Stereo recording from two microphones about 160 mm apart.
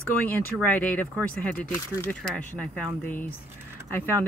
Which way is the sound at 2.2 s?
5° left (ahead or behind).